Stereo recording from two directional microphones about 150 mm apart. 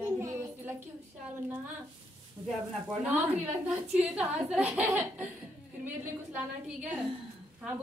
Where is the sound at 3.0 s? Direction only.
5° right (ahead or behind).